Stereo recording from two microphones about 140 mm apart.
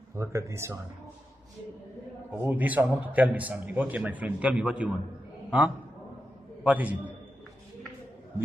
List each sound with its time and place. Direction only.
0.1 s speech: 20° right (ahead or behind)
2.4 s a man's voice: 10° right (ahead or behind)
6.6 s a man's voice: 10° right (ahead or behind)